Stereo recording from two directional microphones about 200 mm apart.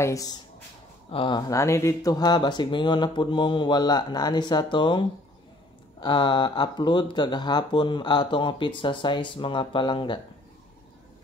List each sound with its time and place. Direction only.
0.0 s speech: 15° left (ahead or behind)